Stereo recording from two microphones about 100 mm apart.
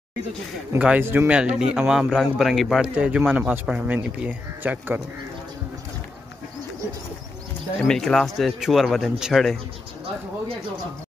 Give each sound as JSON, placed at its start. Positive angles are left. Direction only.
{"t": 0.7, "sound": "a man's voice", "side_deg": -15}
{"t": 2.8, "sound": "a man's voice", "side_deg": -10}
{"t": 7.8, "sound": "a man's voice", "side_deg": 5}